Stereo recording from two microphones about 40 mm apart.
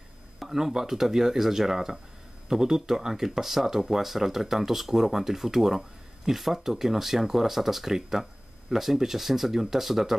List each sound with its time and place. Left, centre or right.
0.4 s speech: centre